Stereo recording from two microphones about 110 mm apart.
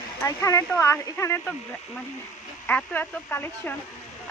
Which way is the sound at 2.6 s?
20° left (ahead or behind).